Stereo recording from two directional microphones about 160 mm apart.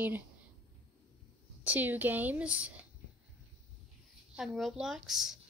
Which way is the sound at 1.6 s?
10° right (ahead or behind).